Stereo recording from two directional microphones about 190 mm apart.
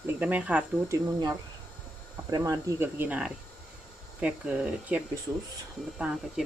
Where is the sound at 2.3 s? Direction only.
20° right (ahead or behind).